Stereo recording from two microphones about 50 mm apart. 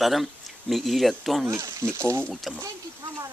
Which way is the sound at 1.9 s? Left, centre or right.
Right.